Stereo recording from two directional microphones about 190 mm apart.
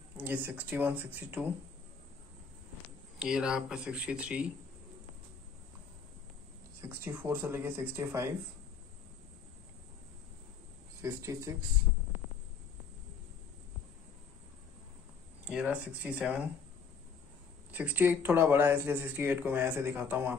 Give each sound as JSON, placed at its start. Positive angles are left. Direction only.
{"t": 0.2, "sound": "speech", "side_deg": -10}
{"t": 3.2, "sound": "speech", "side_deg": -5}
{"t": 7.1, "sound": "speech", "side_deg": -10}
{"t": 11.0, "sound": "speech", "side_deg": -15}
{"t": 15.4, "sound": "speech", "side_deg": -5}
{"t": 17.6, "sound": "speech", "side_deg": -10}